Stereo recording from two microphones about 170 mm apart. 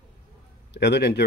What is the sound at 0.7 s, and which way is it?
Speech, 80° left.